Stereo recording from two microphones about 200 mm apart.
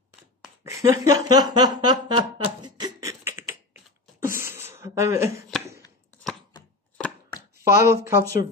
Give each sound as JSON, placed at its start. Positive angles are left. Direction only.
{"t": 0.7, "sound": "a sound", "side_deg": -15}
{"t": 4.2, "sound": "beatboxing", "side_deg": -10}
{"t": 7.6, "sound": "speech", "side_deg": -15}